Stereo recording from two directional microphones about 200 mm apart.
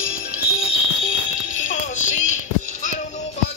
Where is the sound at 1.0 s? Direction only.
40° left (ahead or behind).